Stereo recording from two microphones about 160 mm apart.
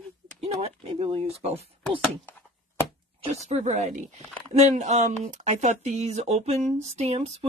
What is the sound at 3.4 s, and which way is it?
Speech, 45° right (ahead or behind).